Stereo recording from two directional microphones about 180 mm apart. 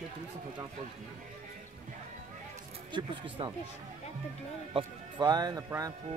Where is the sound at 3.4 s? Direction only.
25° right (ahead or behind).